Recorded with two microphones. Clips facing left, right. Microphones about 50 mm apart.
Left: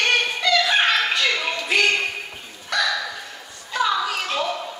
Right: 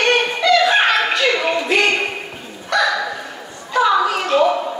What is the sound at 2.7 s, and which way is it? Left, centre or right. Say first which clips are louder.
Dog: right 6 dB; centre.